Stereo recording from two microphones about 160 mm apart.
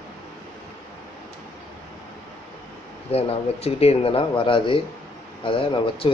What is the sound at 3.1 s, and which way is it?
Speech, 40° left (ahead or behind).